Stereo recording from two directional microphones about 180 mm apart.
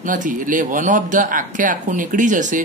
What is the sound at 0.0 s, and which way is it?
A man's voice, 45° right (ahead or behind).